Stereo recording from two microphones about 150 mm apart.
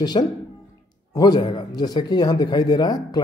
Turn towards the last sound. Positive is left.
turn(degrees=30)  # may be behind; listen again after turning